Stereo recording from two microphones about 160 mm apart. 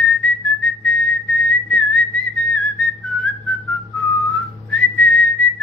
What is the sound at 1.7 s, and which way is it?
Whistling, 5° left (ahead or behind).